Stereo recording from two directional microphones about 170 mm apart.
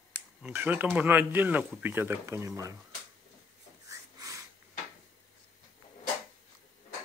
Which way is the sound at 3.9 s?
20° right (ahead or behind).